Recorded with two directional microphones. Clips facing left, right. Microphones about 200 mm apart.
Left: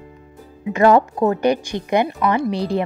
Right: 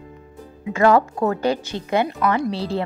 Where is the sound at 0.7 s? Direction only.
20° left (ahead or behind).